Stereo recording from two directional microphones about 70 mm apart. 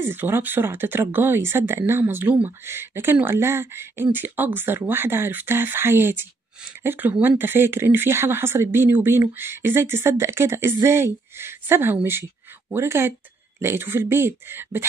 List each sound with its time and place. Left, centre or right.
0.0 s speech: right